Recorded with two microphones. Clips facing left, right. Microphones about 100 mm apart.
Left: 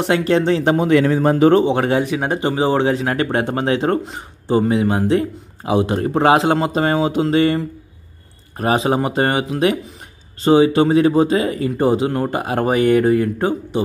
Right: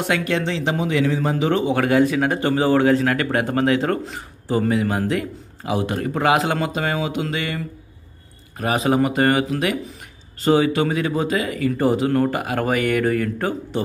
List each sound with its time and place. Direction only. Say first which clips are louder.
0.0 s speech: left 6 dB; 30° left (ahead or behind)
1.7 s speech: even; 25° left (ahead or behind)